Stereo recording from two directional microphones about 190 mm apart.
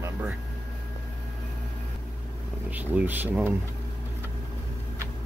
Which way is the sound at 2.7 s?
10° right (ahead or behind).